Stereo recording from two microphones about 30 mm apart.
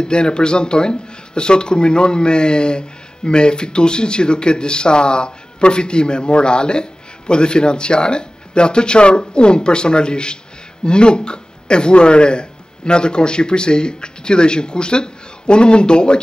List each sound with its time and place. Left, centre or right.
0.0 s speech: left